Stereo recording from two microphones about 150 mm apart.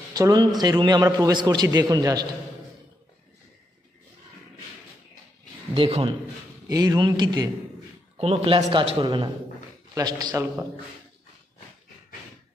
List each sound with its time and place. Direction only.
0.1 s a man's voice: 25° right (ahead or behind)
5.8 s speech: 40° right (ahead or behind)
6.7 s a man's voice: 25° right (ahead or behind)
8.2 s speech: 40° right (ahead or behind)
9.0 s a man's voice: 30° right (ahead or behind)